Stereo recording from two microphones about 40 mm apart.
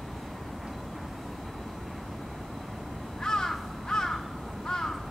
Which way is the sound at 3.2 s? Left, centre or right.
Centre.